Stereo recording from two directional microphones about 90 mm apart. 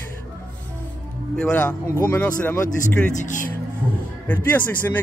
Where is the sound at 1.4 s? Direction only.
15° left (ahead or behind).